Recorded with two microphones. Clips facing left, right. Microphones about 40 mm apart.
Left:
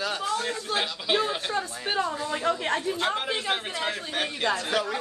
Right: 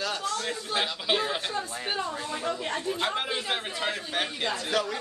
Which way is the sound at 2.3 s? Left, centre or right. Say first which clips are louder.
Left 6 dB; left.